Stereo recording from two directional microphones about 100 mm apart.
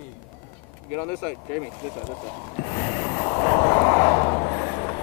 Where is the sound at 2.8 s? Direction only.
25° left (ahead or behind).